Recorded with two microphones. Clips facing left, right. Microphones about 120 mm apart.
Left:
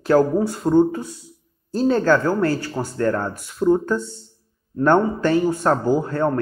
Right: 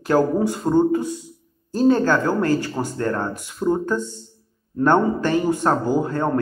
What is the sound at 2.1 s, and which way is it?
Speech, 15° right (ahead or behind).